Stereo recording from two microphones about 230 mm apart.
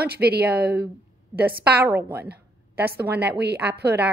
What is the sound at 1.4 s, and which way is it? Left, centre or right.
Speech, centre.